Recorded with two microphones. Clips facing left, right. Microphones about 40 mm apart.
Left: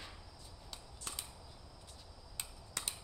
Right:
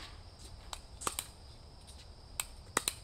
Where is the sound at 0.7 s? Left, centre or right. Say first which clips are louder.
Right 8 dB; right.